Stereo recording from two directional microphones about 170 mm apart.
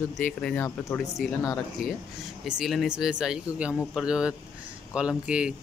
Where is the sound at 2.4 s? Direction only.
Centre (ahead or behind).